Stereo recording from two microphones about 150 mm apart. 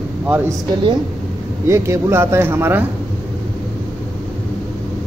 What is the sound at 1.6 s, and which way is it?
Speech, 20° right (ahead or behind).